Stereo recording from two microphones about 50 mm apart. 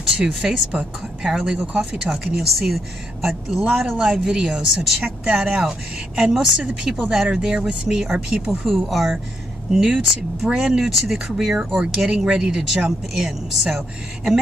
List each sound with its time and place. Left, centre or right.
0.2 s speech: centre
1.7 s speech: right
2.4 s speech: centre
4.7 s speech: right; by 9.1 s centre
9.7 s speech: centre